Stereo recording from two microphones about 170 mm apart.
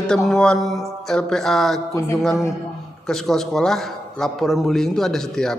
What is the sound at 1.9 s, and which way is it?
Speech, 20° left (ahead or behind).